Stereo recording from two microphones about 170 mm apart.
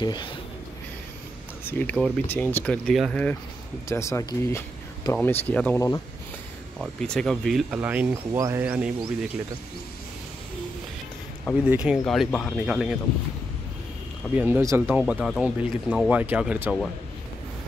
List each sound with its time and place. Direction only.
0.0 s speech: 25° left (ahead or behind)
1.6 s speech: 10° left (ahead or behind)
3.9 s speech: 15° left (ahead or behind); by 8.9 s 10° right (ahead or behind)
11.6 s speech: 5° right (ahead or behind)
14.3 s speech: 10° right (ahead or behind)